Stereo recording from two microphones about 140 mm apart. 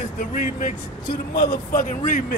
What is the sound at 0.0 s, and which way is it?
Speech, 65° left (ahead or behind).